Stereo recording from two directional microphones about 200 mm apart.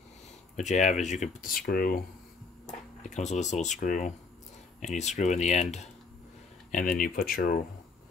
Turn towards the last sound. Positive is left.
turn(degrees=45)  # may be behind; listen again after turning